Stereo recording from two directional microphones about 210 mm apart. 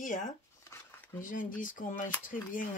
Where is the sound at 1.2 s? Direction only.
40° left (ahead or behind).